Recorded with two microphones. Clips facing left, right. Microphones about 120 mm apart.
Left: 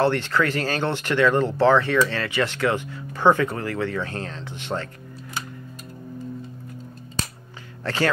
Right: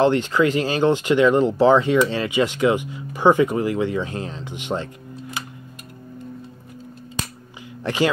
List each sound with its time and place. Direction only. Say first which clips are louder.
0.0 s speech: right 4 dB; 15° right (ahead or behind)
7.8 s speech: right 3 dB; 15° right (ahead or behind)